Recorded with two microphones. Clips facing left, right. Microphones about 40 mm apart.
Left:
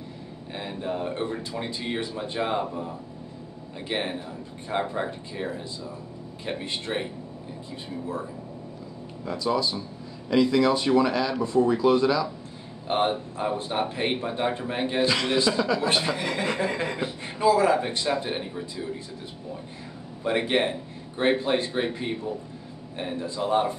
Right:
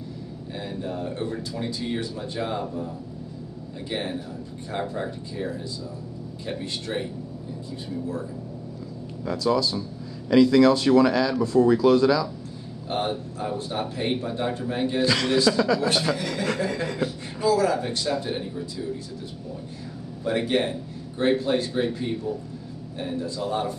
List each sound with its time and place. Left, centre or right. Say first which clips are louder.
0.5 s speech: left 1 dB; left
3.9 s speech: left 1 dB; left
9.2 s speech: right 3 dB; left
20.2 s speech: even; left